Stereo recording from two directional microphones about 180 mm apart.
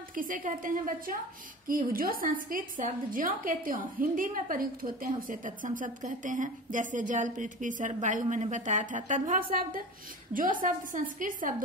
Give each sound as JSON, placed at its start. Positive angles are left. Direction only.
{"t": 0.1, "sound": "a woman's voice", "side_deg": -50}